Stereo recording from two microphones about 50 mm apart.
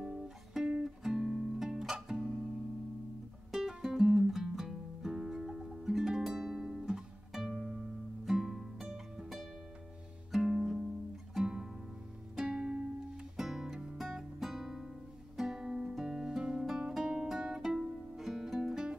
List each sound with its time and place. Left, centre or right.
0.6 s music: centre
3.5 s music: centre
13.4 s guitar: centre
15.3 s music: centre
15.9 s guitar: centre
17.7 s music: centre